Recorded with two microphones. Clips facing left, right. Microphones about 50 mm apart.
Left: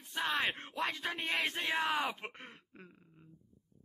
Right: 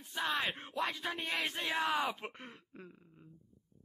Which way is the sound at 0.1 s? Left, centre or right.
Left.